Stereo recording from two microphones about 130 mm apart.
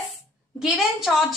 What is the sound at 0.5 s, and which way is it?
Speech, 5° right (ahead or behind).